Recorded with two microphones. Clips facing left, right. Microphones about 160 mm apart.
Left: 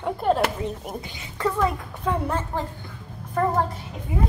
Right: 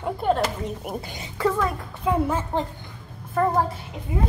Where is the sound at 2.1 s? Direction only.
15° right (ahead or behind).